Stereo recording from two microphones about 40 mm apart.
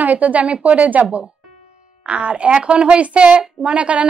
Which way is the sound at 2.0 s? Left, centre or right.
Right.